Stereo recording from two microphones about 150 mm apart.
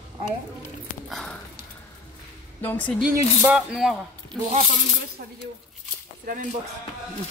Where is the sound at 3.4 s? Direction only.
5° right (ahead or behind).